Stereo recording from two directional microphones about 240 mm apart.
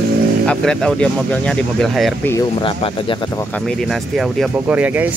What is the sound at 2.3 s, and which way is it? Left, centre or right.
Speech, left.